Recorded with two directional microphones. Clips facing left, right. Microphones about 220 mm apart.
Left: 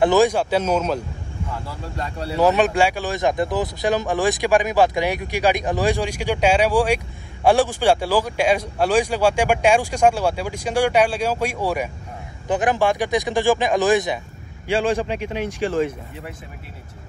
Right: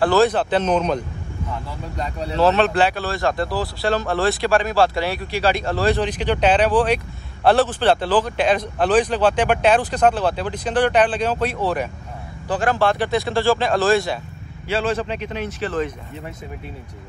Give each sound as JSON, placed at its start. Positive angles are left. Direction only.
{"t": 0.0, "sound": "speech", "side_deg": 15}
{"t": 2.2, "sound": "speech", "side_deg": 15}